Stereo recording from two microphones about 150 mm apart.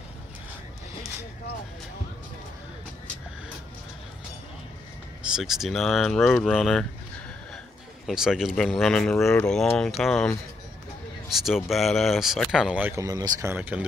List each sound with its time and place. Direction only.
5.2 s speech: 5° right (ahead or behind)
8.1 s speech: 5° right (ahead or behind)
12.9 s speech: 25° right (ahead or behind)
13.5 s speech: 10° right (ahead or behind)